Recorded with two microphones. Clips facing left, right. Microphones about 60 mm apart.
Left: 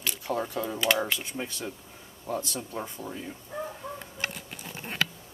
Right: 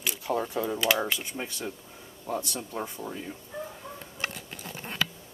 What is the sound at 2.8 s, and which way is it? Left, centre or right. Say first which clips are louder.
Speech: right 3 dB; centre.